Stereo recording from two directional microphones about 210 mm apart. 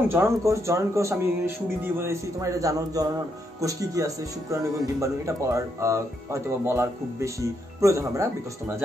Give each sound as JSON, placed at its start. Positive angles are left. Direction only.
{"t": 0.1, "sound": "speech", "side_deg": -15}